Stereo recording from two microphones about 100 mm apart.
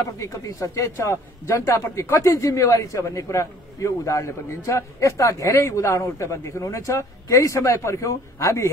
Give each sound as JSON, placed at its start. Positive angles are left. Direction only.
{"t": 0.2, "sound": "a man's voice", "side_deg": 35}